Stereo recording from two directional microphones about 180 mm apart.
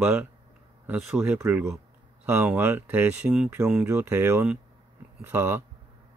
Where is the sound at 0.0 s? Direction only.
10° right (ahead or behind).